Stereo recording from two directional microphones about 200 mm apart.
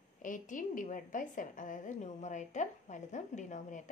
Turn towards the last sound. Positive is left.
turn(degrees=35)  # may be behind; listen again after turning